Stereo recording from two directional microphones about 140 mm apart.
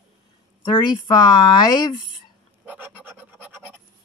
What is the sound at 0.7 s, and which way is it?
Speech, 30° left (ahead or behind).